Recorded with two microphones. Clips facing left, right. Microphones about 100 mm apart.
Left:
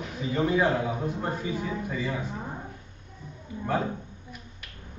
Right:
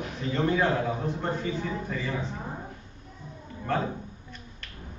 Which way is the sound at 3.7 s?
10° left (ahead or behind).